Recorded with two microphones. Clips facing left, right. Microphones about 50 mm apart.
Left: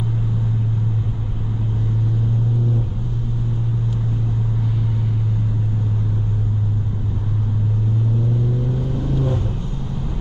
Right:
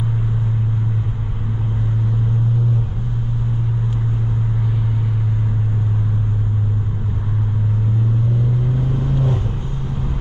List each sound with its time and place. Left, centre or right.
8.9 s vehicle: centre